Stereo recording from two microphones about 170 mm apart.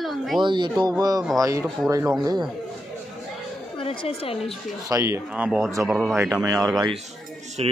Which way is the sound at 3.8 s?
30° left (ahead or behind).